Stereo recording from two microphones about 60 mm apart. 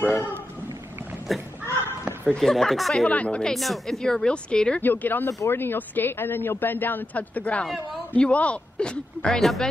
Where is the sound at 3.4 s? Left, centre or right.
Centre.